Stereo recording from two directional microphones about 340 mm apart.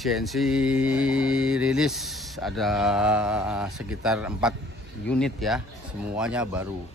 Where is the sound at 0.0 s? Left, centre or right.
Centre.